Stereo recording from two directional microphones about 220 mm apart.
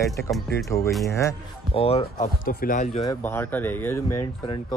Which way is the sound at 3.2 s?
10° left (ahead or behind).